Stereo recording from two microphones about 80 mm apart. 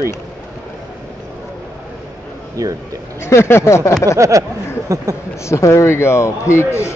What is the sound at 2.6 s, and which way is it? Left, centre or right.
Speech, right.